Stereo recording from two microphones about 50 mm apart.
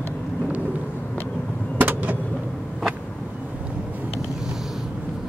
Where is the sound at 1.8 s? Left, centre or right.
Right.